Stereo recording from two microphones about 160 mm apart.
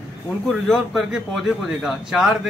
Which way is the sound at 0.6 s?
Centre (ahead or behind).